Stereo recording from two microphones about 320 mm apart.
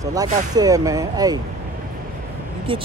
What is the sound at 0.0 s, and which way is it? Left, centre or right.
Speech, centre.